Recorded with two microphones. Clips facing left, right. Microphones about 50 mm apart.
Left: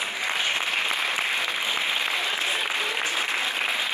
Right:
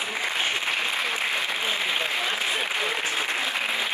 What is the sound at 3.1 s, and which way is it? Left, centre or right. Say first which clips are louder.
Applause: even; right.